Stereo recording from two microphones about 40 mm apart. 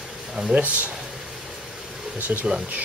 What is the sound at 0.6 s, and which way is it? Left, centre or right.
Speech, right.